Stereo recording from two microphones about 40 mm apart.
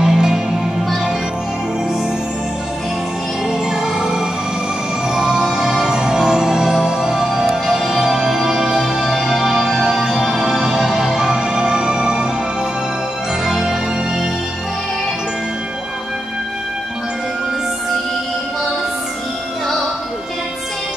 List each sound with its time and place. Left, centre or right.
0.0 s music: centre
3.4 s music: centre
13.5 s music: centre